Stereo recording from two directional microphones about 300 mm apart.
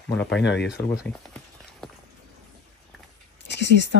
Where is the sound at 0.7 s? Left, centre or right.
Centre.